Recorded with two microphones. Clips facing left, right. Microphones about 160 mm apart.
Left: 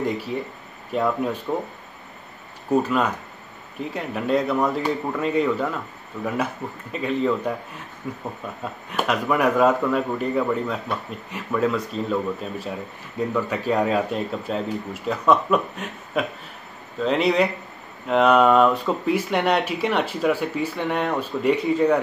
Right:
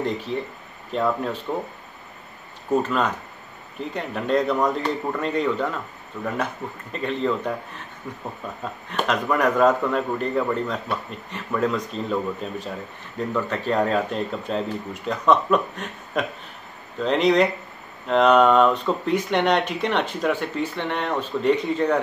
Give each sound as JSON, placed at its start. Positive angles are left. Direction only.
{"t": 0.0, "sound": "speech", "side_deg": 10}
{"t": 2.7, "sound": "a man's voice", "side_deg": 10}
{"t": 8.9, "sound": "a man's voice", "side_deg": 5}